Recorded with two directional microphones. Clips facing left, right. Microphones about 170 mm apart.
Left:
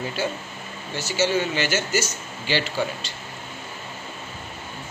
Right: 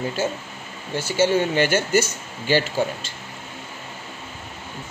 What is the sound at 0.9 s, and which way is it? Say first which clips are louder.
Speech: right 3 dB; 55° right (ahead or behind).